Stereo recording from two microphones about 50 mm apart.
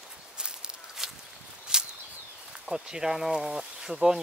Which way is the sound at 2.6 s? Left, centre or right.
Centre.